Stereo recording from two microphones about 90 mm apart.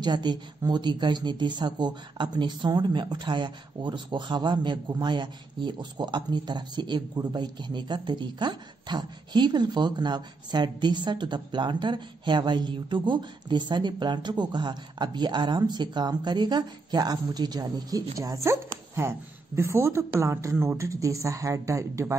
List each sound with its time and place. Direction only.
0.0 s speech: 55° right (ahead or behind); by 22.0 s 35° right (ahead or behind)